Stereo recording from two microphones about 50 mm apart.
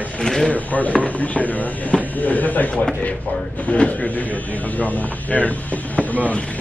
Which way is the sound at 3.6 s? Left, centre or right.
Centre.